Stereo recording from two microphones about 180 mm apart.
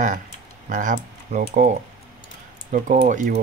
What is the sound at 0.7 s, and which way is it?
Speech, 45° right (ahead or behind).